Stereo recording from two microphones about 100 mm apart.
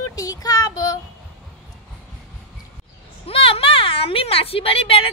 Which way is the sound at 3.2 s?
70° left (ahead or behind).